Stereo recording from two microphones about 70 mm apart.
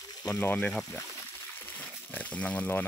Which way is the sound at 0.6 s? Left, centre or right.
Centre.